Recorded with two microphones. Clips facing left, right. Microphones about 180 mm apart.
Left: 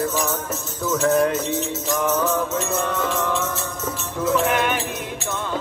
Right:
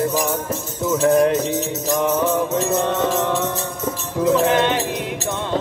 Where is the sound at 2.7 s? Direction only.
25° right (ahead or behind).